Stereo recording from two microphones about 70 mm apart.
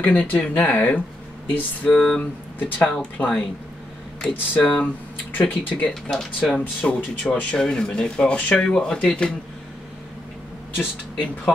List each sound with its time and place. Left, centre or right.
0.0 s speech: left
5.9 s speech: centre